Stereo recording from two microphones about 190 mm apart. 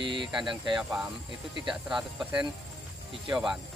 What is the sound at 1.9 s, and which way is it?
Speech, 5° right (ahead or behind).